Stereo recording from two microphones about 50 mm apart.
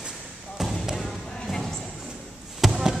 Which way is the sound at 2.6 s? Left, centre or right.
Centre.